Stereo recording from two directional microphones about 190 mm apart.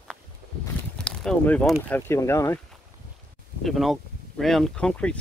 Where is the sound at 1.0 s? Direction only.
5° left (ahead or behind).